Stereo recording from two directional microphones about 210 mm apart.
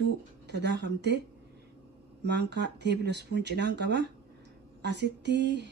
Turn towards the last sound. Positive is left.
turn(degrees=-55)  # may be behind; listen again after turning